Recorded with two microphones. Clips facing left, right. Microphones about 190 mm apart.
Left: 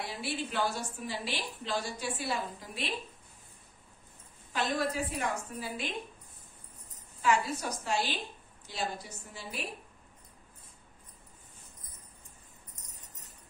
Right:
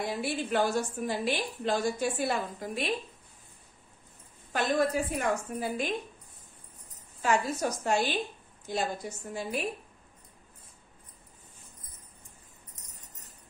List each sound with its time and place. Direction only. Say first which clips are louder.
0.0 s a woman's voice: right 5 dB; 50° right (ahead or behind)
4.5 s a woman's voice: right 5 dB; 50° right (ahead or behind)
7.2 s a woman's voice: right 2 dB; 45° right (ahead or behind)